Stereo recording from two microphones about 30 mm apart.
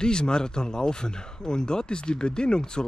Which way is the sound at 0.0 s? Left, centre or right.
Left.